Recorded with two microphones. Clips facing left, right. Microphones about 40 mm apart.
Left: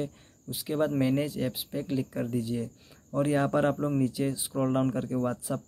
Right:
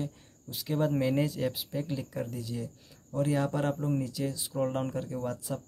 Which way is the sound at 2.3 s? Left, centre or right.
Left.